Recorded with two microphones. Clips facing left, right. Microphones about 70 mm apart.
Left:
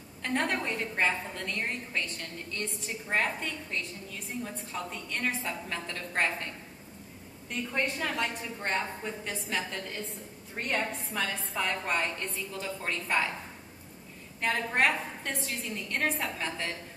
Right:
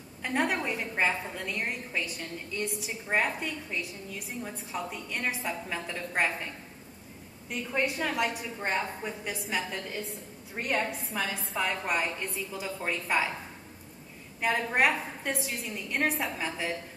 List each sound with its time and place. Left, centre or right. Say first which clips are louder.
0.2 s a woman's voice: right 1 dB; centre
14.4 s a woman's voice: right 1 dB; centre